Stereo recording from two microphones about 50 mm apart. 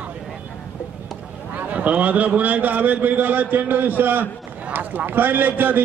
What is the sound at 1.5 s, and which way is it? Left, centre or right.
A man's voice, right.